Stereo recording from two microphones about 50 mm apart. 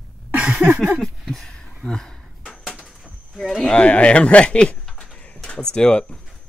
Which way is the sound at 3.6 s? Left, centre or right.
Left.